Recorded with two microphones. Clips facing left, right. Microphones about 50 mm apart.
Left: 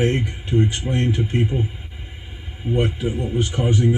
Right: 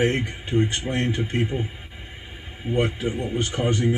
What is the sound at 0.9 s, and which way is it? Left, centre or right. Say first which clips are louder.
Speech: left 3 dB; centre.